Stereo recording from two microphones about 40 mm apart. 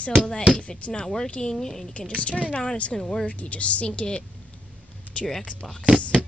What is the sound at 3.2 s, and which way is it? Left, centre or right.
A woman's voice, left.